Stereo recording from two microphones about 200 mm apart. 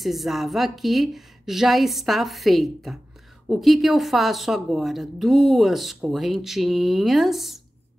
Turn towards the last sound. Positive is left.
turn(degrees=0)  # may be behind; listen again after turning